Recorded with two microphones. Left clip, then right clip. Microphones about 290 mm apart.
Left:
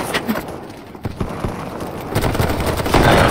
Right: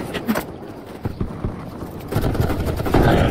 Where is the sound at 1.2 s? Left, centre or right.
Left.